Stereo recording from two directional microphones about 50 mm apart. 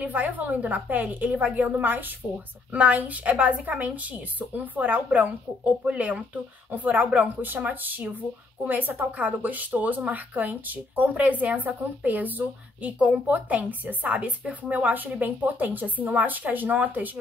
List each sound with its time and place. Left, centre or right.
0.0 s speech: right